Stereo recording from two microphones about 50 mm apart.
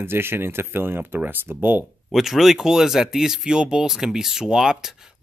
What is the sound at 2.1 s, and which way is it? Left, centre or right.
Speech, centre.